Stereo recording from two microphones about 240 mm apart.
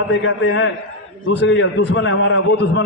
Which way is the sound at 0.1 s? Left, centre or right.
Left.